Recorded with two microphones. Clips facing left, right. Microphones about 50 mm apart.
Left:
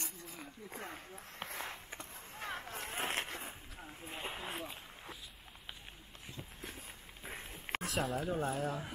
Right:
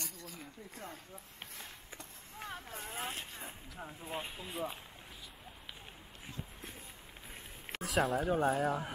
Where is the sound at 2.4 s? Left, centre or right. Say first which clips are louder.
Left 2 dB; left.